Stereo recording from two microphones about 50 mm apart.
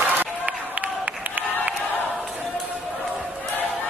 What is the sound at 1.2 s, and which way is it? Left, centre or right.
Crowd, right.